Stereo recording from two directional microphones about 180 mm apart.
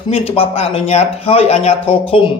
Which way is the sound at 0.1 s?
30° left (ahead or behind).